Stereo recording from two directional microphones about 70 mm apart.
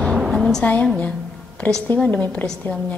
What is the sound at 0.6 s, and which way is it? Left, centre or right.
A woman's voice, left.